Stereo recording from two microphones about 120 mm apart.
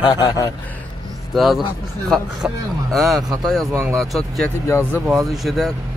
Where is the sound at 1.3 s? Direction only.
Centre (ahead or behind).